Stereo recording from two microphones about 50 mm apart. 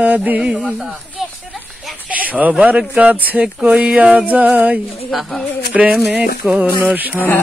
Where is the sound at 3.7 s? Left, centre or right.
Centre.